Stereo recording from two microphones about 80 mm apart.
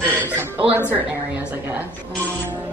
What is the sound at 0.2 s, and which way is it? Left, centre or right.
Chuckle, right.